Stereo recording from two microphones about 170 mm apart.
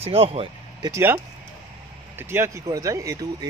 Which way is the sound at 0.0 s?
35° right (ahead or behind).